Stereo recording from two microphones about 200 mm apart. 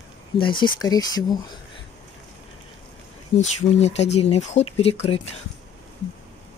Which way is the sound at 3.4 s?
35° left (ahead or behind).